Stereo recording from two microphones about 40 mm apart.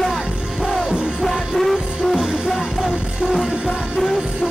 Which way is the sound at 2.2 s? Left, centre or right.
Centre.